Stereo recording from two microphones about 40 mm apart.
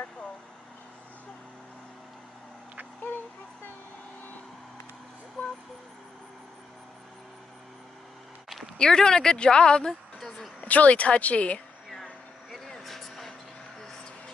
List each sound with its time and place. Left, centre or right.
8.7 s speech: centre
10.6 s speech: left
12.0 s air conditioning: centre
12.8 s vehicle: centre